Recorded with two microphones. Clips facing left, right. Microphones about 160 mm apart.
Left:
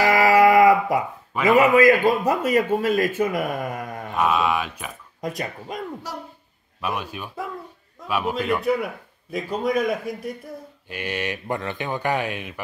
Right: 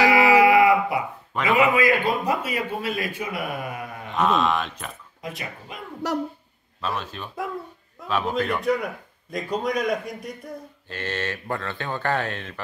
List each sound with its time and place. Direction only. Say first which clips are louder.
0.1 s a sound: left 1 dB; 40° left (ahead or behind)
1.5 s a man's voice: left 5 dB; 45° left (ahead or behind)
4.1 s speech: even; 10° left (ahead or behind)
5.2 s a man's voice: left 6 dB; 40° left (ahead or behind)
6.0 s speech: right 8 dB; 70° right (ahead or behind)
6.8 s a man's voice: left 1 dB; 15° left (ahead or behind)
10.9 s speech: left 1 dB; 15° left (ahead or behind)